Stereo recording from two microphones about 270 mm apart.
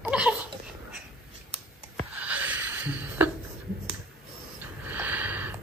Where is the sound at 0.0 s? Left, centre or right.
Centre.